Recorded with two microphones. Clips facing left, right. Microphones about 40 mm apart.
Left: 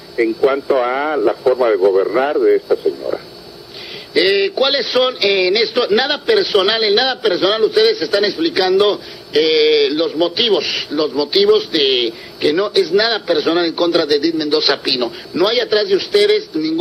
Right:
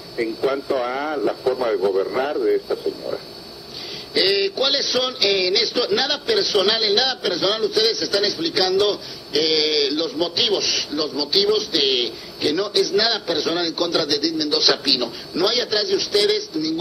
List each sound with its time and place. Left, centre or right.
0.4 s a man's voice: left